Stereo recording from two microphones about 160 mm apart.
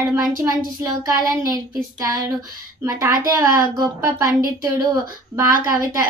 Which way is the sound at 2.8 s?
20° right (ahead or behind).